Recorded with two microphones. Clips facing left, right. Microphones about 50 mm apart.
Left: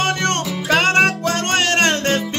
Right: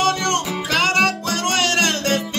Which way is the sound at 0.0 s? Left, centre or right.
Left.